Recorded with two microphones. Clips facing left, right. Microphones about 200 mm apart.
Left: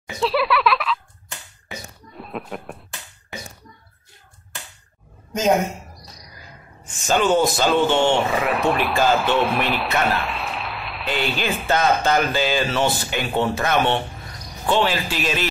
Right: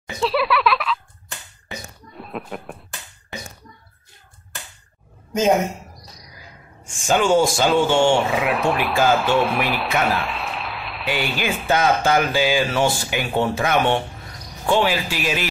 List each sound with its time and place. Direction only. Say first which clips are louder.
0.0 s speech: even; centre (ahead or behind)
2.1 s a sound: even; centre (ahead or behind)
6.8 s speech: right 1 dB; 10° right (ahead or behind)